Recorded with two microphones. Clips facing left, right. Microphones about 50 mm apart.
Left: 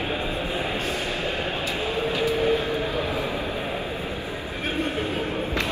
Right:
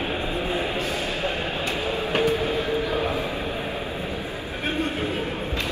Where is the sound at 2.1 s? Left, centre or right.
Right.